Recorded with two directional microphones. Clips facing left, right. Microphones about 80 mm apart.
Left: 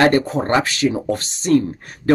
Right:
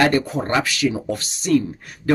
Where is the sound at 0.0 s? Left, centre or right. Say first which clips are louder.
Left 3 dB; left.